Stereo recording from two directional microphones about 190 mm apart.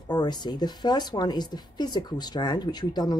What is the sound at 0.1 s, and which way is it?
Speech, 20° left (ahead or behind).